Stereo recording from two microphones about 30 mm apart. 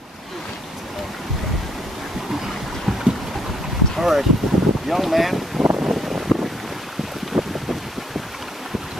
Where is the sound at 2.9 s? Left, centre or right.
Centre.